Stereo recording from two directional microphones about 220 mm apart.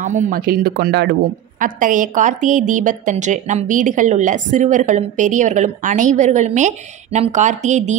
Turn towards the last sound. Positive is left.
turn(degrees=-35)  # may be behind; listen again after turning